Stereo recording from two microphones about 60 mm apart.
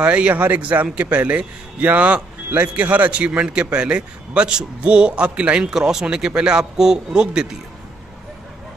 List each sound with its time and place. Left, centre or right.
0.0 s a man's voice: right